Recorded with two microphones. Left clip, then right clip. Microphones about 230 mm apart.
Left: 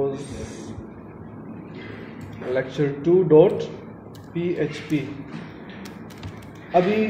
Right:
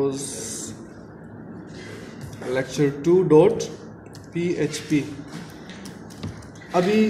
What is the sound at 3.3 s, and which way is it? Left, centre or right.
Speech, right.